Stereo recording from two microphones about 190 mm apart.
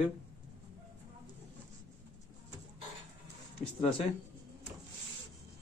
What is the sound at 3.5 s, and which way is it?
Speech, 30° left (ahead or behind).